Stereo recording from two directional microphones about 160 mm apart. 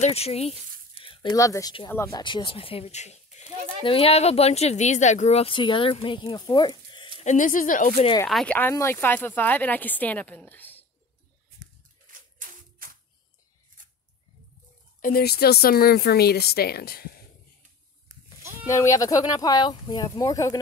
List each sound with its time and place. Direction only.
0.0 s a sound: 40° left (ahead or behind)
1.3 s speech: 20° left (ahead or behind)
7.2 s speech: 50° left (ahead or behind)
8.3 s speech: centre (ahead or behind)
8.5 s speech: 15° left (ahead or behind)
12.4 s music: 60° right (ahead or behind)
15.0 s speech: 60° left (ahead or behind)
18.0 s goat: 15° right (ahead or behind)
18.7 s speech: 20° left (ahead or behind)